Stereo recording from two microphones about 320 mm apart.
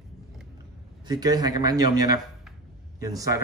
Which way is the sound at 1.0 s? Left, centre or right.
Centre.